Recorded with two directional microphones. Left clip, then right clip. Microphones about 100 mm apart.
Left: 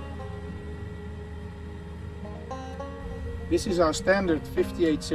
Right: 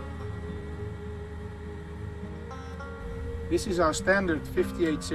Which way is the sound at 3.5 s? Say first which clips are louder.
Left 2 dB; 20° right (ahead or behind).